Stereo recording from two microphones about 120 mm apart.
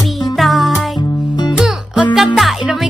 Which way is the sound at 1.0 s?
35° left (ahead or behind).